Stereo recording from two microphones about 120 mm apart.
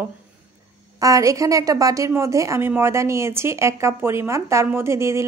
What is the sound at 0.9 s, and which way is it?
A woman's voice, 30° right (ahead or behind).